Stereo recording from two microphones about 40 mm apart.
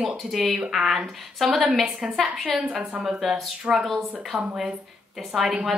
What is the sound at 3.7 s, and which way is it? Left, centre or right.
Speech, right.